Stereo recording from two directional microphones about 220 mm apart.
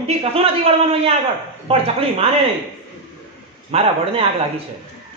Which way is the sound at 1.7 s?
25° right (ahead or behind).